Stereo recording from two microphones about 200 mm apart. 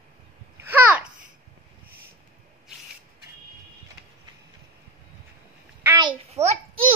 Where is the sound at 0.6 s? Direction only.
10° right (ahead or behind).